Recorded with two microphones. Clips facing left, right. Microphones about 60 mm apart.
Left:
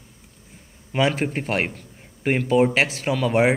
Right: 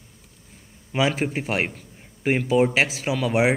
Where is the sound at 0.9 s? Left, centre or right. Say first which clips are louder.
Left 1 dB; centre.